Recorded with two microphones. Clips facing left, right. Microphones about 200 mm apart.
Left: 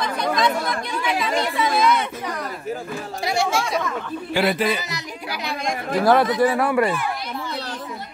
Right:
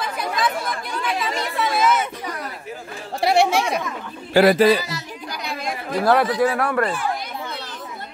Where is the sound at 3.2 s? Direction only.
65° right (ahead or behind).